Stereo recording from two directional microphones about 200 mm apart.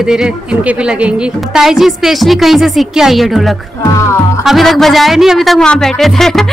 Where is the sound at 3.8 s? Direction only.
15° left (ahead or behind).